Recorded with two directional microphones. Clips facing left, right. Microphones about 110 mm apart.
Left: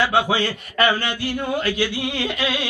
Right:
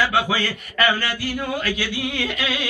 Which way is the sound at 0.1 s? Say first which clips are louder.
Left 2 dB; 30° left (ahead or behind).